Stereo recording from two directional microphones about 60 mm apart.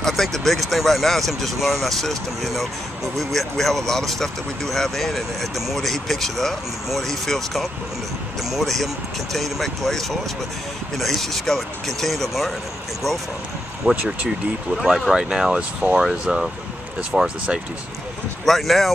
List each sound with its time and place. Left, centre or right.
0.0 s speech: centre
13.9 s speech: right
14.9 s speech: centre
18.4 s speech: centre